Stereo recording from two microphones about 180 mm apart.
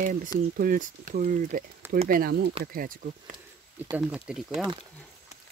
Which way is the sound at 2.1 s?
60° right (ahead or behind).